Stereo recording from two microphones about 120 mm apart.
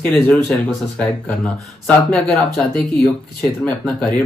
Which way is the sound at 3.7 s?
10° left (ahead or behind).